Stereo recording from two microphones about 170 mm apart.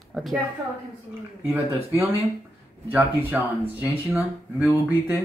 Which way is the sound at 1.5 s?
10° right (ahead or behind).